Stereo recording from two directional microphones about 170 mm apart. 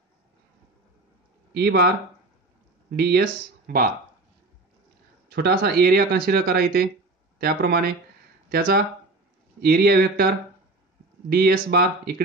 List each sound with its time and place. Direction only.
1.5 s speech: 70° right (ahead or behind)
3.0 s speech: 65° right (ahead or behind)
5.3 s a man's voice: 70° right (ahead or behind)